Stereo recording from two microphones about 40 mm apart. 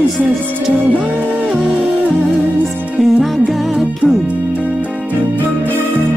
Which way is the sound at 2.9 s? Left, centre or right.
Centre.